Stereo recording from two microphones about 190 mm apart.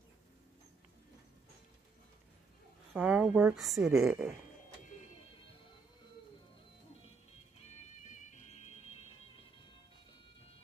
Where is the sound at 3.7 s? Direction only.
15° right (ahead or behind).